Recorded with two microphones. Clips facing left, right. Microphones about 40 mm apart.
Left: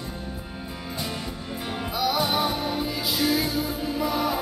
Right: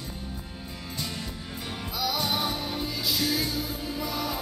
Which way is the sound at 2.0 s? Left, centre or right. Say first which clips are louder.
Left 4 dB; centre.